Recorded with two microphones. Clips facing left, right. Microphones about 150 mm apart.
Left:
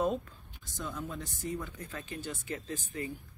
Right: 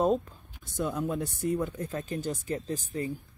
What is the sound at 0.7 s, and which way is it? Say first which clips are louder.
Speech: right 9 dB; 60° right (ahead or behind).